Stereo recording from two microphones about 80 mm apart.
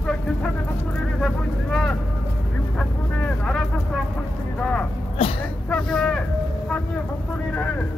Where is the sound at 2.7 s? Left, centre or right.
Centre.